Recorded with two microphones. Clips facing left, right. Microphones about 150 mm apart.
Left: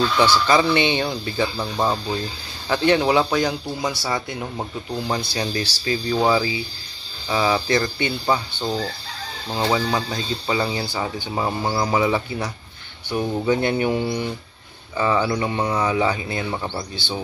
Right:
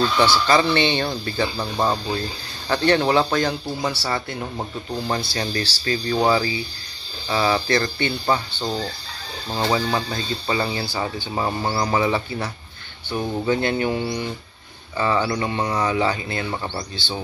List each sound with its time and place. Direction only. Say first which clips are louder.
0.5 s speech: even; 10° left (ahead or behind)
1.6 s speech: even; centre (ahead or behind)
2.7 s speech: even; 10° left (ahead or behind)
5.3 s speech: left 1 dB; 15° left (ahead or behind)